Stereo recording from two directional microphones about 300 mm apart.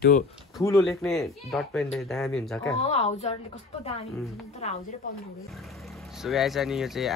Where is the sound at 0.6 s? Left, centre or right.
Centre.